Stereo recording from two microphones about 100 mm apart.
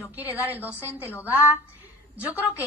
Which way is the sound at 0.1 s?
20° right (ahead or behind).